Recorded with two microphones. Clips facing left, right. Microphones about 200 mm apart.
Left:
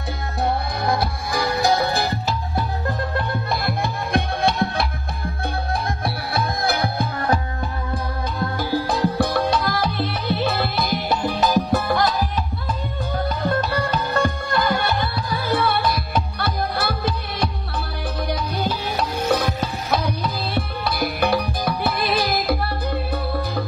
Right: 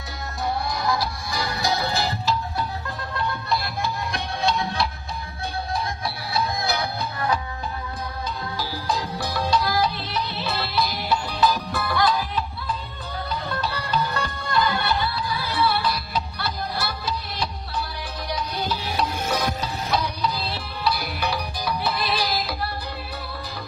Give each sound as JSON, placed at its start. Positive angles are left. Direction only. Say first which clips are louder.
{"t": 0.4, "sound": "music", "louder": "left 3 dB", "side_deg": 55}
{"t": 6.0, "sound": "music", "louder": "left 3 dB", "side_deg": 55}
{"t": 8.5, "sound": "music", "louder": "left 6 dB", "side_deg": 55}